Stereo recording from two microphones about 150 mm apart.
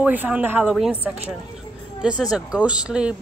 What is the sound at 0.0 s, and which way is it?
Speech, 10° right (ahead or behind).